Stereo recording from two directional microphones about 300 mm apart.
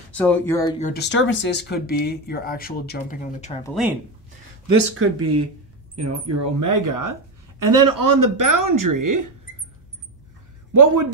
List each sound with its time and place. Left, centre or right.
0.2 s speech: centre
0.7 s speech: left
4.9 s speech: right
5.9 s speech: right
10.7 s a man's voice: right